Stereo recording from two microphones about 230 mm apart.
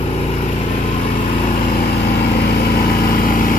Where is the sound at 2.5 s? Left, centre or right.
Left.